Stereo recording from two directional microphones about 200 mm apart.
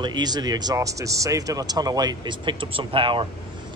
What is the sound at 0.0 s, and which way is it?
Speech, 20° right (ahead or behind).